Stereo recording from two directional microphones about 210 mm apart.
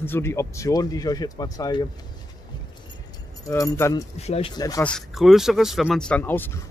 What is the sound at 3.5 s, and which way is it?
Speech, 15° left (ahead or behind).